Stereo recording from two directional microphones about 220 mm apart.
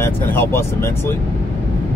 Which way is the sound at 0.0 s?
10° left (ahead or behind).